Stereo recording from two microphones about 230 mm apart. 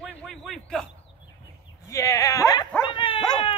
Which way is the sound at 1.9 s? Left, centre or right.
Centre.